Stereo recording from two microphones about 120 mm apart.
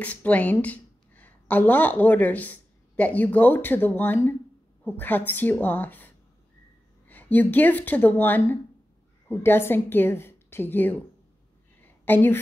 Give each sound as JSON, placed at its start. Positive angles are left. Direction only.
{"t": 0.0, "sound": "a woman's voice", "side_deg": 10}
{"t": 12.0, "sound": "a woman's voice", "side_deg": 15}